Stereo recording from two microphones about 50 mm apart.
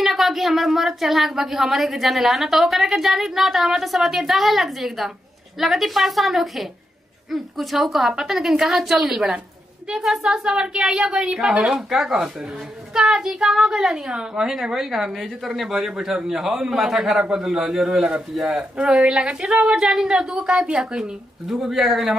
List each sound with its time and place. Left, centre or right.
0.0 s a woman's voice: centre
10.5 s a woman's voice: centre
19.0 s a woman's voice: centre
20.8 s speech: centre